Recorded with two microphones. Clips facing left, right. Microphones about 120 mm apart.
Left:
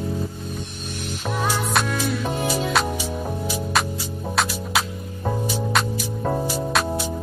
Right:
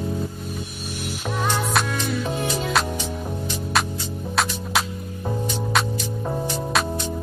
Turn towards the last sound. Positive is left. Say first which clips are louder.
# left 1 dB
turn(degrees=5)  # may be behind; listen again after turning